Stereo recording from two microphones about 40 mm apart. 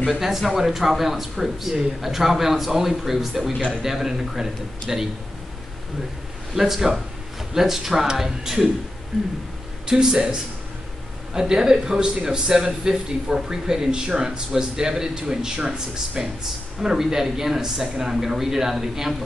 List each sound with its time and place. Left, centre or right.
0.0 s speech: centre
6.5 s speech: centre
9.8 s speech: centre